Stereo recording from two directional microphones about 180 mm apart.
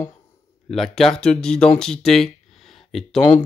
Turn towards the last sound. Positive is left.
turn(degrees=5)  # may be behind; listen again after turning